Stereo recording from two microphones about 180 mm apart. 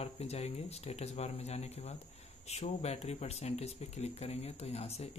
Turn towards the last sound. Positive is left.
turn(degrees=35)  # may be behind; listen again after turning